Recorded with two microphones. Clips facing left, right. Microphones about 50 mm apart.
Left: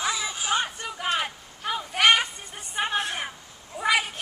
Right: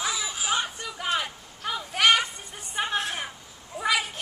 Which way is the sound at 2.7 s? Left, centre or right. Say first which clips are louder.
Left 1 dB; centre.